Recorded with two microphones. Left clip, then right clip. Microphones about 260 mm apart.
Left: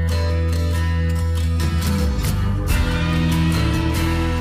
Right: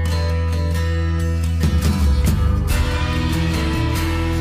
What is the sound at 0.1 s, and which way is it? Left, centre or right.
Music, centre.